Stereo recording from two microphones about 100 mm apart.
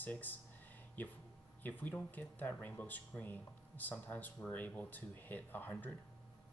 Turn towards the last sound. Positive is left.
turn(degrees=20)  # may be behind; listen again after turning